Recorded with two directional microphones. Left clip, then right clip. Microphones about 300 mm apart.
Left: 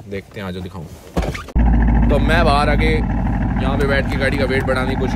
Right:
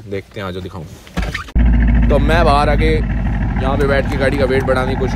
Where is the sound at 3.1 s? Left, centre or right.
Left.